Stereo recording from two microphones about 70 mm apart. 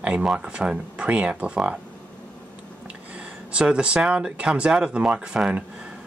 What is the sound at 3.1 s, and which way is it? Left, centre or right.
Speech, centre.